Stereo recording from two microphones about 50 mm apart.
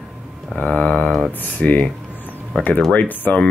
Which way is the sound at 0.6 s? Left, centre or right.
Left.